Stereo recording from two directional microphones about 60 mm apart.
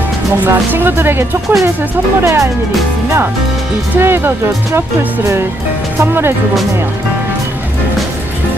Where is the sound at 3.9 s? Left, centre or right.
Right.